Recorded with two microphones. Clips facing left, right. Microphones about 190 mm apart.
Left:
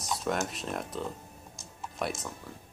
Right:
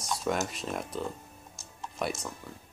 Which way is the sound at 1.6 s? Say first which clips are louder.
Even; centre (ahead or behind).